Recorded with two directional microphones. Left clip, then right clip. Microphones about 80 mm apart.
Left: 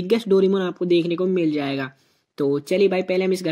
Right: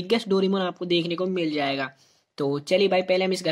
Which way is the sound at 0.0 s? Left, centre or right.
Left.